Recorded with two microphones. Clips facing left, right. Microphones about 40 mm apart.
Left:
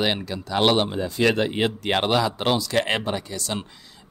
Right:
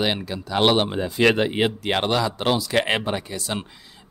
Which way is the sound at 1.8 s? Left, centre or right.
Centre.